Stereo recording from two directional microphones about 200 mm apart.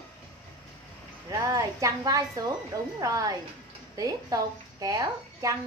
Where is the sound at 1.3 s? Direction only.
15° right (ahead or behind).